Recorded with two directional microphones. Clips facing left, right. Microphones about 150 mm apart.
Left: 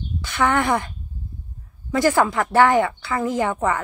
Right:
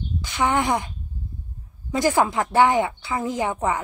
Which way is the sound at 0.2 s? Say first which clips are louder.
Left 2 dB; 15° right (ahead or behind).